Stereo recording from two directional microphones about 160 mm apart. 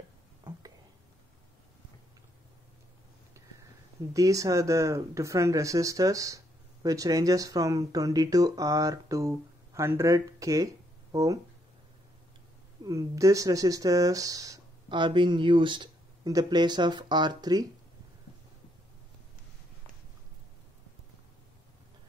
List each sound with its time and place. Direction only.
0.4 s whispering: 25° right (ahead or behind)
3.4 s a sound: 20° right (ahead or behind)
4.1 s speech: 20° right (ahead or behind)
12.8 s speech: 20° right (ahead or behind)